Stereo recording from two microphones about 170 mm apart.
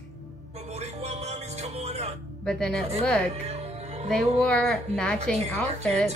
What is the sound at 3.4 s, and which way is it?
Music, 40° right (ahead or behind).